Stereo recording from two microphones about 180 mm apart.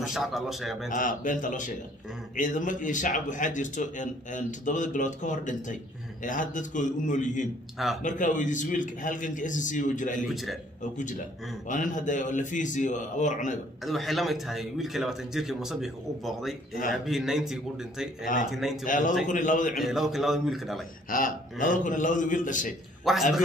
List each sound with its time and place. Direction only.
0.0 s a man's voice: centre (ahead or behind)
0.8 s a man's voice: 45° left (ahead or behind)
7.7 s a man's voice: centre (ahead or behind)
8.0 s a man's voice: 45° left (ahead or behind)
10.2 s a man's voice: centre (ahead or behind)
10.8 s a man's voice: 45° left (ahead or behind)
13.8 s a man's voice: centre (ahead or behind)
18.9 s a man's voice: 45° left (ahead or behind)
19.8 s a man's voice: centre (ahead or behind)
21.1 s a man's voice: 45° left (ahead or behind)
23.1 s a man's voice: centre (ahead or behind)